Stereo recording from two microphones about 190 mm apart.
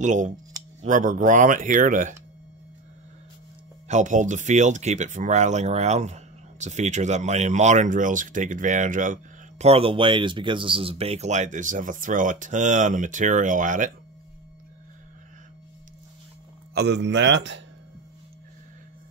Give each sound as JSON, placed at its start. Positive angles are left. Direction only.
{"t": 0.0, "sound": "speech", "side_deg": -40}
{"t": 3.8, "sound": "speech", "side_deg": -40}
{"t": 16.7, "sound": "a man's voice", "side_deg": -60}